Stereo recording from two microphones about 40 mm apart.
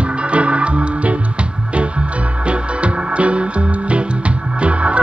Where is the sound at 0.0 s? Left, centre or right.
Right.